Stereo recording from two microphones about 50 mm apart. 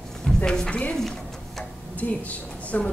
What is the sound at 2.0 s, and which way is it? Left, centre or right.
Speech, left.